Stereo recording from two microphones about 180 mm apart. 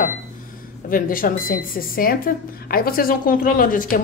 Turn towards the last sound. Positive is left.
turn(degrees=50)  # may be behind; listen again after turning